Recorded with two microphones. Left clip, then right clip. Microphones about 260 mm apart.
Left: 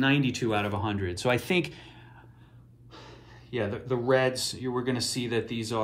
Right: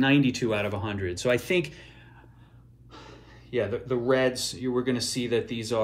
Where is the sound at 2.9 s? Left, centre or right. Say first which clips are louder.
Right 1 dB; centre.